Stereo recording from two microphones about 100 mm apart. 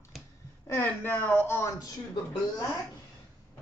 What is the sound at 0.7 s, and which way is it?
Speech, 20° left (ahead or behind).